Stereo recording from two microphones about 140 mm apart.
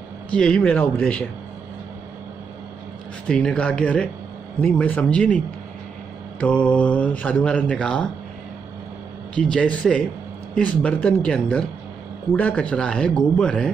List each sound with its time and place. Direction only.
0.3 s speech: 5° left (ahead or behind)
3.3 s speech: 5° left (ahead or behind)
6.4 s speech: 10° left (ahead or behind)
9.3 s speech: 5° left (ahead or behind)